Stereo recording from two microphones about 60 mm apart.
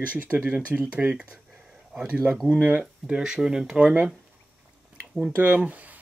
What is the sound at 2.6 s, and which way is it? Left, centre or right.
Speech, right.